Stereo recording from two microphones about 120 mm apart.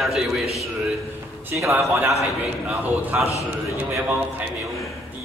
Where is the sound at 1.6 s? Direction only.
20° right (ahead or behind).